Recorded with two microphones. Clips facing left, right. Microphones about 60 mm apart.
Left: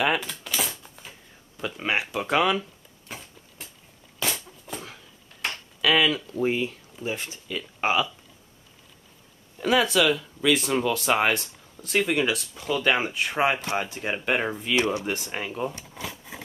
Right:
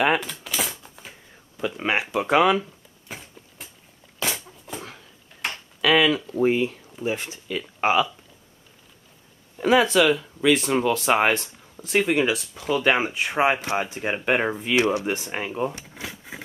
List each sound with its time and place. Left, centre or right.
0.0 s typewriter: centre
1.6 s speech: centre
3.1 s a sound: centre
6.3 s speech: centre
9.6 s speech: centre